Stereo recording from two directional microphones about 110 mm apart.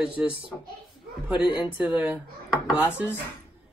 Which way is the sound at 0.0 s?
10° right (ahead or behind).